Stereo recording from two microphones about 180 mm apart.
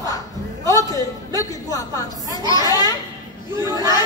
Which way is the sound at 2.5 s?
20° left (ahead or behind).